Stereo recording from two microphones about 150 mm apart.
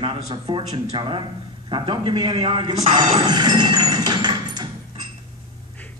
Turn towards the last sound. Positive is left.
turn(degrees=-30)  # may be behind; listen again after turning